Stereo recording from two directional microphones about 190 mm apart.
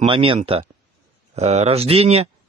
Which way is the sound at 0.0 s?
25° right (ahead or behind).